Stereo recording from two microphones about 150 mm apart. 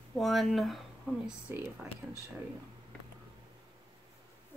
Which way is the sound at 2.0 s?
Centre (ahead or behind).